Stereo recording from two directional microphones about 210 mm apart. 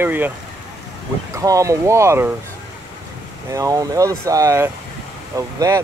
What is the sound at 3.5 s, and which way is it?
Speech, 15° right (ahead or behind).